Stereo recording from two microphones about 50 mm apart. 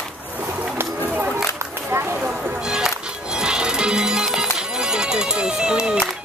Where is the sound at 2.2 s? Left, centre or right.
Centre.